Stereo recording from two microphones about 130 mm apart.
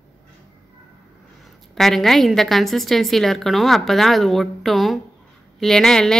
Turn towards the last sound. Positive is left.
turn(degrees=5)  # may be behind; listen again after turning